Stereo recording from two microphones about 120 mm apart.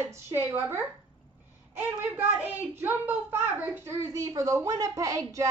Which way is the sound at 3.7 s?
20° right (ahead or behind).